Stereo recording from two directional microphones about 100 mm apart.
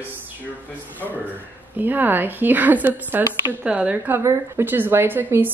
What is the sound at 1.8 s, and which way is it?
A woman's voice, 20° right (ahead or behind).